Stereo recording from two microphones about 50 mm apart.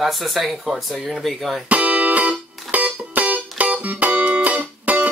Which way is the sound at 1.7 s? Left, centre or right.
Right.